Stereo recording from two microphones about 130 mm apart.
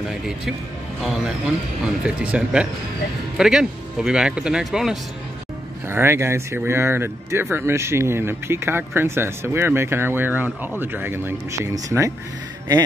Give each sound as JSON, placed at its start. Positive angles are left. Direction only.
{"t": 1.0, "sound": "speech", "side_deg": -5}
{"t": 5.9, "sound": "speech", "side_deg": -20}